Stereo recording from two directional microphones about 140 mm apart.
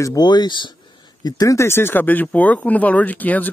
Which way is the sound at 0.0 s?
30° left (ahead or behind).